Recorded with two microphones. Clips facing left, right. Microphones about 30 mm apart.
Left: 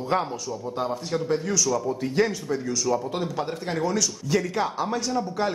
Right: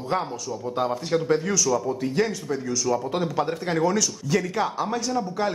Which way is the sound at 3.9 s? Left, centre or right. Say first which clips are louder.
Right 1 dB; centre.